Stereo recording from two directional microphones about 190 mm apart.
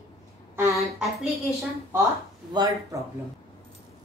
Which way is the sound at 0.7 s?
Centre (ahead or behind).